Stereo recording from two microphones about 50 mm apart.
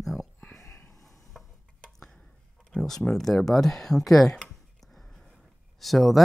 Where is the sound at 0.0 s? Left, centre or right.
Centre.